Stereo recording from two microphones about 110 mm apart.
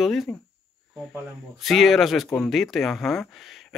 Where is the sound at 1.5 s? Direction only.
Centre (ahead or behind).